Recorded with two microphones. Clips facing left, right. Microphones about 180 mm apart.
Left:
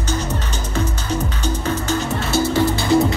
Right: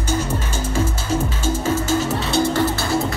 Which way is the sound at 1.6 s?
45° right (ahead or behind).